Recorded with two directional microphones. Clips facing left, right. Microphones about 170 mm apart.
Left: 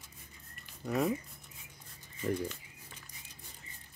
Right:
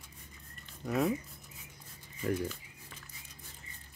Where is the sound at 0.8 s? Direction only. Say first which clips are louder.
Right 1 dB; centre (ahead or behind).